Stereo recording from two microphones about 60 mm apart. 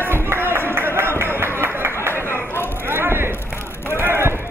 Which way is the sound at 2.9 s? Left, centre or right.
Right.